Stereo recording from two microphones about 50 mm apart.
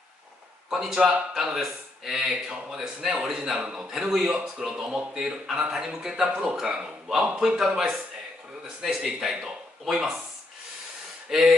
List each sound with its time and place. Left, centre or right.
0.7 s speech: centre
11.3 s speech: centre